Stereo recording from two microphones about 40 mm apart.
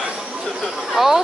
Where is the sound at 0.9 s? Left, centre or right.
Centre.